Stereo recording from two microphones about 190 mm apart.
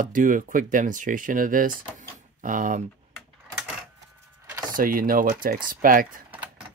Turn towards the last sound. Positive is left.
turn(degrees=-45)  # may be behind; listen again after turning